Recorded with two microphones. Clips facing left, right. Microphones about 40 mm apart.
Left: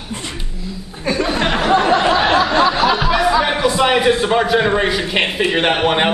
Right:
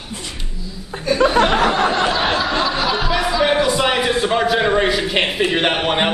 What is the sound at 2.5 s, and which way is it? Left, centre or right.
Music, centre.